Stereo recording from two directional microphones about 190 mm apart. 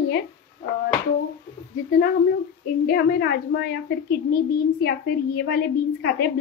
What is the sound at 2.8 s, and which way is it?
Speech, 55° left (ahead or behind).